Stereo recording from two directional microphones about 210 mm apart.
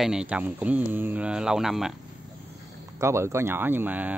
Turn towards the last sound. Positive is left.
turn(degrees=-10)  # may be behind; listen again after turning